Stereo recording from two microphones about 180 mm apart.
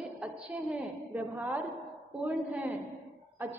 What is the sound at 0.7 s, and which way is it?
A woman's voice, 10° right (ahead or behind).